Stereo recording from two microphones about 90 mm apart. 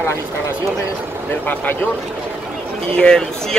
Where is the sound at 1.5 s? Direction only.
20° left (ahead or behind).